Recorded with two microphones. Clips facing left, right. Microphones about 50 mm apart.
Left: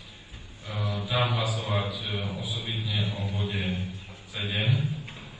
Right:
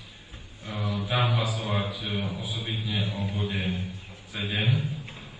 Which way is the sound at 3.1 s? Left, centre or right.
Right.